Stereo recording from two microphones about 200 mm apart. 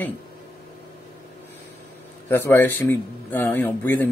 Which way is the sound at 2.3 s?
10° left (ahead or behind).